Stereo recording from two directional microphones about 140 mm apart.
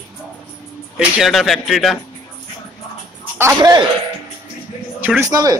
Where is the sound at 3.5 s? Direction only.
30° right (ahead or behind).